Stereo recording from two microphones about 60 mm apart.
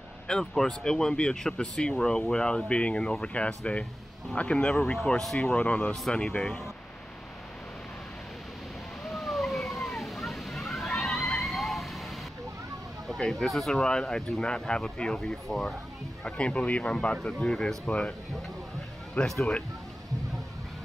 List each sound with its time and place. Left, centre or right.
0.3 s speech: centre
9.1 s water: centre
13.1 s speech: centre
16.3 s speech: centre
19.1 s speech: centre